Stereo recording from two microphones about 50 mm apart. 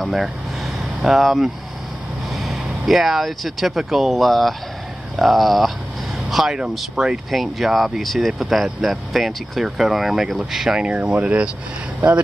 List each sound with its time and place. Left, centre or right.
0.0 s speech: centre
10.9 s speech: right